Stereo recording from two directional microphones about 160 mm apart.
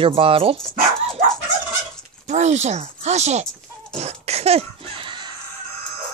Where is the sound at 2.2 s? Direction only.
45° right (ahead or behind).